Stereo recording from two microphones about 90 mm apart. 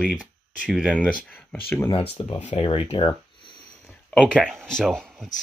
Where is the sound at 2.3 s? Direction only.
85° left.